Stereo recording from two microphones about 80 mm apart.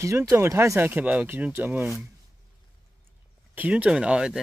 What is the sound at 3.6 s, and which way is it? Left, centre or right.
Speech, centre.